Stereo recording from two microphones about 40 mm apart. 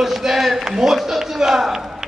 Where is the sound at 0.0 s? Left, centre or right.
Centre.